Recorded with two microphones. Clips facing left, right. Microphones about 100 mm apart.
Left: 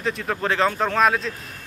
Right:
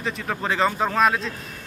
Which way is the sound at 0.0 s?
Centre (ahead or behind).